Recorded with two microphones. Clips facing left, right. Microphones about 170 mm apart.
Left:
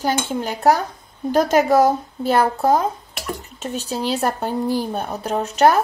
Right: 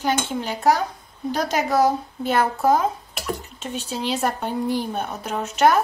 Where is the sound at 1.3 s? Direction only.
50° left (ahead or behind).